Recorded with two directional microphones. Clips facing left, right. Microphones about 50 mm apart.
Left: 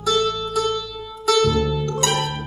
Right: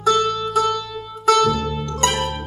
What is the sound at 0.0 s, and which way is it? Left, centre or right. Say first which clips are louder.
Music: right 3 dB; right.